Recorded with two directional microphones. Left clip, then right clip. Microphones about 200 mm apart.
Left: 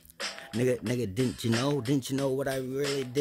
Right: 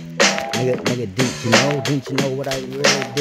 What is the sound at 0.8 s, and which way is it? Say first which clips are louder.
Speech: right 10 dB; 45° right (ahead or behind).